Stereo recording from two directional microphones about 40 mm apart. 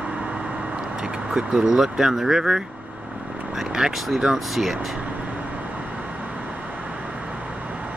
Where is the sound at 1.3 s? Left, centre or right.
Centre.